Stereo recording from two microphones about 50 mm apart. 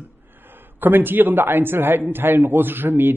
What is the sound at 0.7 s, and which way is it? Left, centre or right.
A man's voice, right.